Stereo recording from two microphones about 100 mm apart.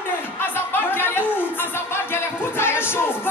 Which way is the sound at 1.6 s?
25° left (ahead or behind).